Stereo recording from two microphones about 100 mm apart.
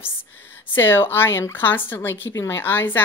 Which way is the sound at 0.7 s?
20° left (ahead or behind).